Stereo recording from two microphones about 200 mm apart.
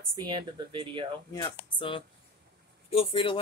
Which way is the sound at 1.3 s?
25° left (ahead or behind).